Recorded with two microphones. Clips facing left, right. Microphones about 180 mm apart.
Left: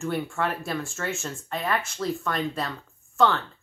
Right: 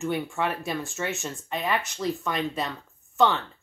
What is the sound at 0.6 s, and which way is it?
Speech, 15° right (ahead or behind).